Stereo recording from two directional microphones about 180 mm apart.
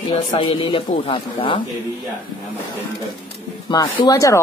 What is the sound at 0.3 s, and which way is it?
Speech, 25° left (ahead or behind).